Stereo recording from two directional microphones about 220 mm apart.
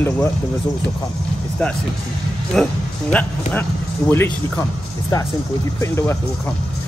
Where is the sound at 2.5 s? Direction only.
Centre (ahead or behind).